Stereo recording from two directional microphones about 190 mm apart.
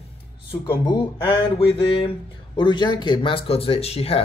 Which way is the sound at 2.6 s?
25° left (ahead or behind).